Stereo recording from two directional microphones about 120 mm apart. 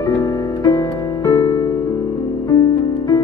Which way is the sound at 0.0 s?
30° left (ahead or behind).